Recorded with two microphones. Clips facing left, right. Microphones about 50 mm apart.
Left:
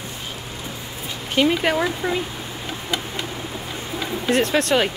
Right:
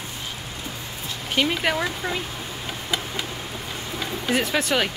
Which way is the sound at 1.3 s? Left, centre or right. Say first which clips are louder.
Left 4 dB; centre.